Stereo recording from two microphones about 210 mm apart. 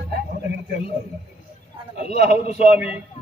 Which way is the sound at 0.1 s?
50° right (ahead or behind).